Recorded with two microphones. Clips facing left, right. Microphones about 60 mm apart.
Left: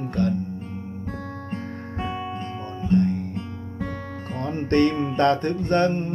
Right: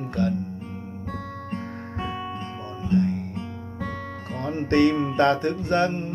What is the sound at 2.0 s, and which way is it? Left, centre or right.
Music, centre.